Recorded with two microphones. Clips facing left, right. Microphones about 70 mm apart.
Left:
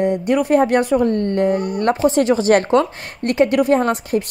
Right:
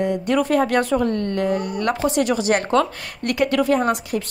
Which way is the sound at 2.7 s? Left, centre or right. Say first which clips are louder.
Left 3 dB; left.